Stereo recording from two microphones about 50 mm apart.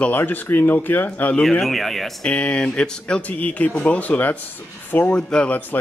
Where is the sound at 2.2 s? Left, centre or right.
Left.